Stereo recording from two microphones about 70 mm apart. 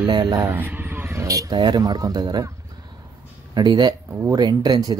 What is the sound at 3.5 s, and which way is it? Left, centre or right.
Speech, right.